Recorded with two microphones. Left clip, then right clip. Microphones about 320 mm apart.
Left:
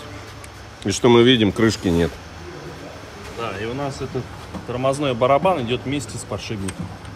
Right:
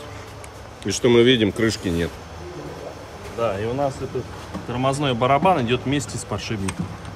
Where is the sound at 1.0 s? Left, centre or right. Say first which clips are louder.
Left 2 dB; centre.